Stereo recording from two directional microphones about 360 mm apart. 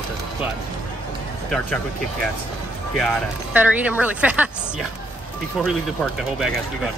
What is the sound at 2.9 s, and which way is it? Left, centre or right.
Speech, centre.